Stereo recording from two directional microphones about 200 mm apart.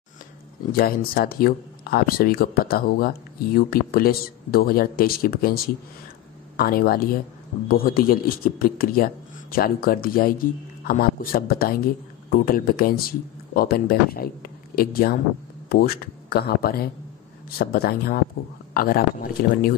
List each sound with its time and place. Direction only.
0.7 s speech: 45° left (ahead or behind)